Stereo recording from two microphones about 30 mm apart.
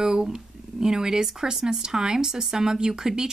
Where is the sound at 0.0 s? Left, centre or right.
Right.